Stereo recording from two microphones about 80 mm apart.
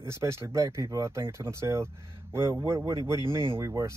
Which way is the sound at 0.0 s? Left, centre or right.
Right.